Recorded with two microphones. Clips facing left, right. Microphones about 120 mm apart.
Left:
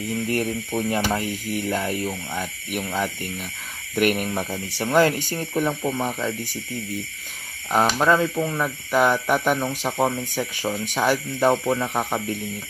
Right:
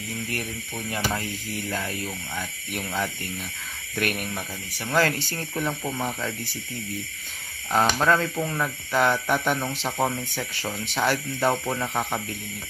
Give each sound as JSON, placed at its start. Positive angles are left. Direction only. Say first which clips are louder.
{"t": 0.7, "sound": "speech", "louder": "left 8 dB", "side_deg": 30}
{"t": 1.1, "sound": "speech", "louder": "left 5 dB", "side_deg": 15}
{"t": 7.7, "sound": "speech", "louder": "left 2 dB", "side_deg": 10}